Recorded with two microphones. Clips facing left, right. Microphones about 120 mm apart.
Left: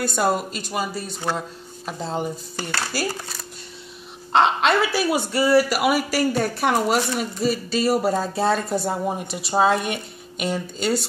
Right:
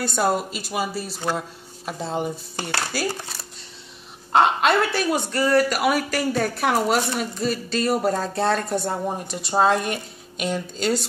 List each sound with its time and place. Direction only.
0.0 s speech: centre (ahead or behind)
4.3 s speech: 5° right (ahead or behind)